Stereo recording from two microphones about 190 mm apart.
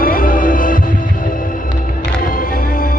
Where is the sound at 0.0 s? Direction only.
45° left (ahead or behind).